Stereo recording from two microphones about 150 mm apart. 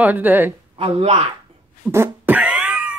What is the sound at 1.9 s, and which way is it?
Cat, 15° right (ahead or behind).